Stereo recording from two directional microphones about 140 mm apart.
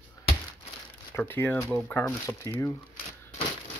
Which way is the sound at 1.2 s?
15° left (ahead or behind).